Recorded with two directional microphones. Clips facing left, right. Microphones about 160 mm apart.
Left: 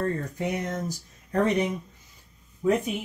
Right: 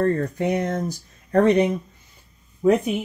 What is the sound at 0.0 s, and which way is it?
Speech, 60° right (ahead or behind).